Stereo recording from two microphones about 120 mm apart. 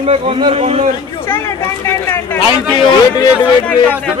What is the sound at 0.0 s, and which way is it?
Speech, 55° right (ahead or behind).